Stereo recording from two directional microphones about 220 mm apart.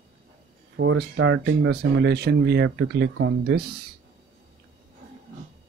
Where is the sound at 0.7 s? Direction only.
55° right (ahead or behind).